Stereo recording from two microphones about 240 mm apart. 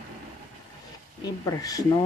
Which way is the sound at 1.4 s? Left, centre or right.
Centre.